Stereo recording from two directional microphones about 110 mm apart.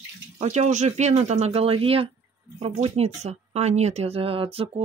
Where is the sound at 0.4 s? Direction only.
90° right.